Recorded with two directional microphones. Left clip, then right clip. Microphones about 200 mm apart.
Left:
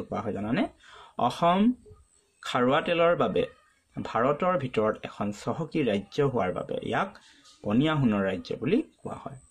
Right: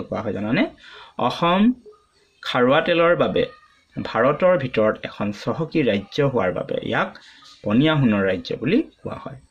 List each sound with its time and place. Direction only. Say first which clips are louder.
0.1 s speech: right 7 dB; 20° left (ahead or behind)